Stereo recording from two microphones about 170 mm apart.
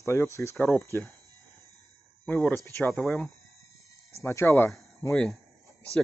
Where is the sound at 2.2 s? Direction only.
10° left (ahead or behind).